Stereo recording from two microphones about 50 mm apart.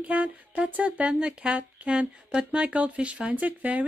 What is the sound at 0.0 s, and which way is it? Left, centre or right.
Speech, right.